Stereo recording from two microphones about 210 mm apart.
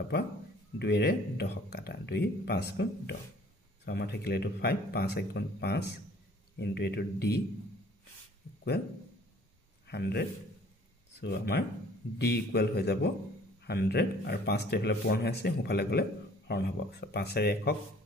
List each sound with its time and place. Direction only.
0.7 s speech: 55° left (ahead or behind)
9.8 s a man's voice: 50° left (ahead or behind)